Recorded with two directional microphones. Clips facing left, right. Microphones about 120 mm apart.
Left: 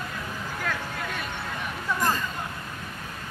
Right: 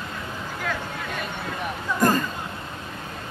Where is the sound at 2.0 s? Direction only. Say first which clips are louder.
Right 6 dB; 50° right (ahead or behind).